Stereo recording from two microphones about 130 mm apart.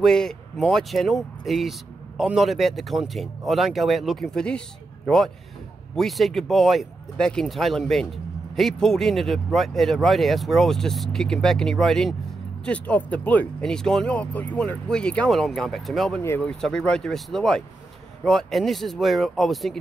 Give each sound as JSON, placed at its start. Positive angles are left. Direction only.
{"t": 0.0, "sound": "speech", "side_deg": 5}
{"t": 16.2, "sound": "speech", "side_deg": 20}
{"t": 16.4, "sound": "speech", "side_deg": 5}